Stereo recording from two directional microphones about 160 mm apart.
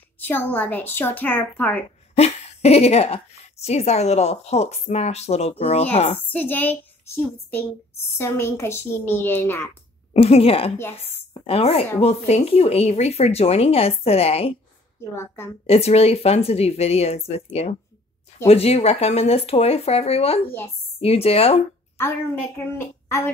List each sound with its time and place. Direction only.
0.2 s a woman's voice: 15° left (ahead or behind)
2.1 s speech: 40° left (ahead or behind)
6.3 s a woman's voice: 10° left (ahead or behind)
10.1 s a woman's voice: 40° left (ahead or behind)
15.1 s a woman's voice: 15° left (ahead or behind)
15.6 s speech: 40° left (ahead or behind)
21.9 s a woman's voice: 15° left (ahead or behind)